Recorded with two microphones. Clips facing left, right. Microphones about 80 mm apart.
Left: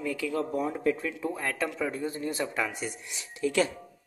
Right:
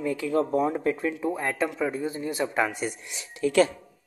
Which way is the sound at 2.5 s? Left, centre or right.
Right.